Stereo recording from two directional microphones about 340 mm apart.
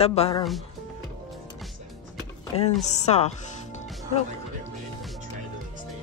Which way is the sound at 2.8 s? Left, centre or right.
Centre.